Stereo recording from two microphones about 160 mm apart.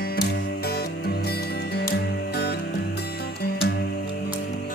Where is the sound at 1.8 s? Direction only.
90° left.